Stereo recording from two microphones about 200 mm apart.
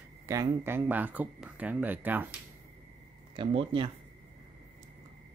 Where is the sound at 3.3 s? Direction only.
25° right (ahead or behind).